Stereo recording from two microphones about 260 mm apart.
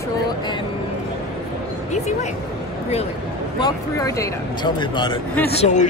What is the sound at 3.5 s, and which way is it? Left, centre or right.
Speech, centre.